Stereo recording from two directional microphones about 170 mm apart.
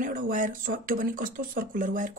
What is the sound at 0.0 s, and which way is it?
Speech, 50° right (ahead or behind).